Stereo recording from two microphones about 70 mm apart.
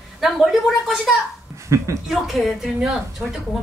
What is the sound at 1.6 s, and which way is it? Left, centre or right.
Speech, right.